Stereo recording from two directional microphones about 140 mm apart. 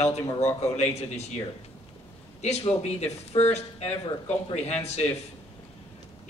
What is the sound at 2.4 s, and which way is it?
A man's voice, 50° left (ahead or behind).